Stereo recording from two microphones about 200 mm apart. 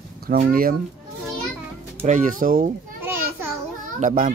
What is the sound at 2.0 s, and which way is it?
Speech, 45° right (ahead or behind).